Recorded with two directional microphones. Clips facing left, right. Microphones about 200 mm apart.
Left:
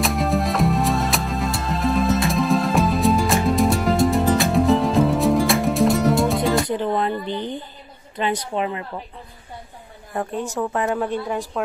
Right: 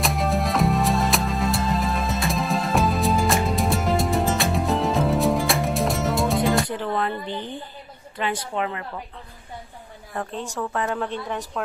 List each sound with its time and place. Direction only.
0.0 s music: centre (ahead or behind)
6.6 s a sound: 20° left (ahead or behind)
8.5 s speech: 20° left (ahead or behind)
10.1 s a woman's voice: 20° left (ahead or behind)